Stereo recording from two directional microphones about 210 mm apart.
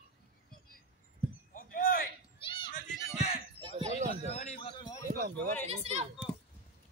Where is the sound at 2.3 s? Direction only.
25° left (ahead or behind).